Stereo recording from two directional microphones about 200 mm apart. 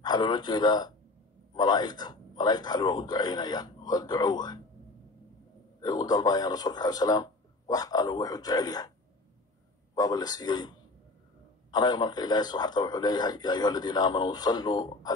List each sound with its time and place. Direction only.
0.0 s a man's voice: 20° left (ahead or behind)
5.8 s a man's voice: 20° left (ahead or behind)
9.9 s a man's voice: 20° left (ahead or behind)